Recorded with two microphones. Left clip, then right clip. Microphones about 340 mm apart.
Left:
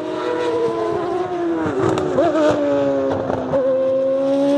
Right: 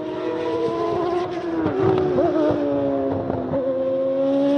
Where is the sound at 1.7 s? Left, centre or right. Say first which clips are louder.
Left 1 dB; left.